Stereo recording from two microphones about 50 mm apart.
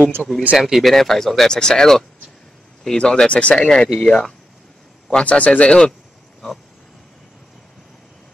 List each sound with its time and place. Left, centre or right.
0.2 s speech: right
0.6 s speech: centre
0.9 s speech: centre
3.0 s a man's voice: left